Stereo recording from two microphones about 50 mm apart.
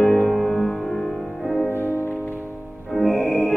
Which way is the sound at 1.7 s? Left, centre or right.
Left.